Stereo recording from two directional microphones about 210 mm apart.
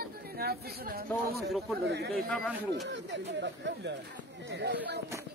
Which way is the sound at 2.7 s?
55° right (ahead or behind).